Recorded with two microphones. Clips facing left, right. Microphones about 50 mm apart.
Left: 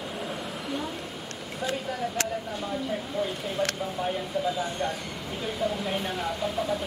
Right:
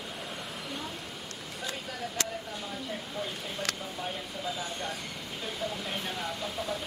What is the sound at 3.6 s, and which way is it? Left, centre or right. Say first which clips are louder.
Speech: left 7 dB; centre.